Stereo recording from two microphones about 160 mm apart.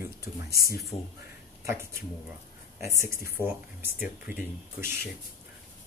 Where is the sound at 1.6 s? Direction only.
15° right (ahead or behind).